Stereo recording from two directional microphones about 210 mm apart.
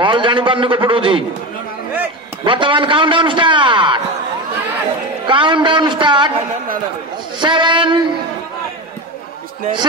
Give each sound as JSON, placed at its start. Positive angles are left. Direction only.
{"t": 0.0, "sound": "a man's voice", "side_deg": -25}
{"t": 2.4, "sound": "a man's voice", "side_deg": -25}
{"t": 5.2, "sound": "a man's voice", "side_deg": -25}
{"t": 7.3, "sound": "a man's voice", "side_deg": -20}